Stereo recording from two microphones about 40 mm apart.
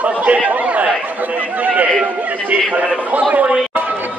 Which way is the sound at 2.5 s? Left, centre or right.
Right.